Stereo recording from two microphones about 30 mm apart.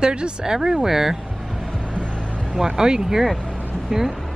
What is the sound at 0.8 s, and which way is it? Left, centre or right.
Speech, centre.